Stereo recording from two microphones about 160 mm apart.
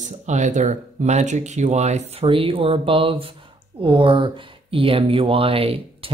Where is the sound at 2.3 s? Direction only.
35° right (ahead or behind).